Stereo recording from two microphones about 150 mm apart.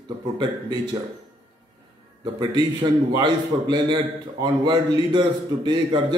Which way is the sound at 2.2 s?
30° right (ahead or behind).